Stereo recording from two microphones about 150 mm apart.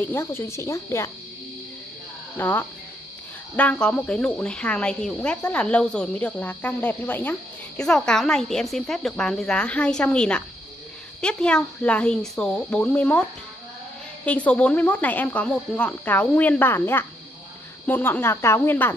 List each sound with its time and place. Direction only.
0.0 s speech: 15° left (ahead or behind)
2.3 s speech: 15° left (ahead or behind)